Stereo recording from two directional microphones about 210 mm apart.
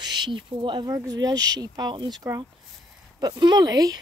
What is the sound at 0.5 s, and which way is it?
Speech, 20° right (ahead or behind).